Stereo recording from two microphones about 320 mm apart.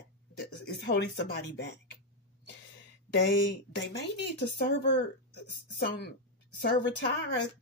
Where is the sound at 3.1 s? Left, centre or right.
Left.